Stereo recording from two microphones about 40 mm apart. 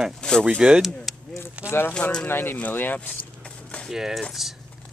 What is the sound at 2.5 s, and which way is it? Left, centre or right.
Speech, left.